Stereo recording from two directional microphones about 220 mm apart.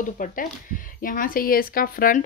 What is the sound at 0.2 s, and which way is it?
Speech, 40° left (ahead or behind).